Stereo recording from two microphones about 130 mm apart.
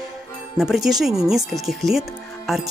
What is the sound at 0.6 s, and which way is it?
Speech, 5° right (ahead or behind).